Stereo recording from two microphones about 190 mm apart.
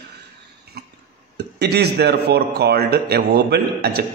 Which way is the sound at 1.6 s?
60° right (ahead or behind).